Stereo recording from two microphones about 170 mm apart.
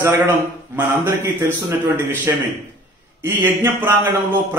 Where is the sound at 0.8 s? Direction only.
15° right (ahead or behind).